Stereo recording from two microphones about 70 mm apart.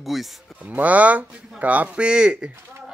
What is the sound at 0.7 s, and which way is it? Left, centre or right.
Speech, right.